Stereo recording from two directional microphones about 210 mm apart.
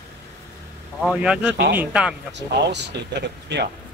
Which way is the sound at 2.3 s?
55° right (ahead or behind).